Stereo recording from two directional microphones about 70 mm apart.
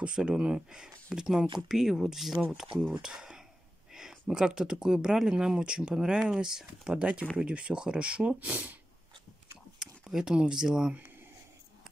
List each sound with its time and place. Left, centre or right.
0.0 s speech: centre
9.8 s speech: centre